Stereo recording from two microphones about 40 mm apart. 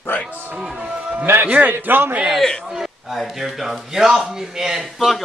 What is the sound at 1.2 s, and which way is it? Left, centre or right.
Speech, right.